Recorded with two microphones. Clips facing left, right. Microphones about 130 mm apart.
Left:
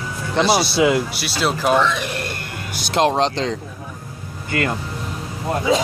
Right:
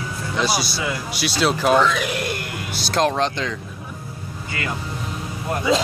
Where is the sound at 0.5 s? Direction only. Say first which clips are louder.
Left 9 dB; 65° left (ahead or behind).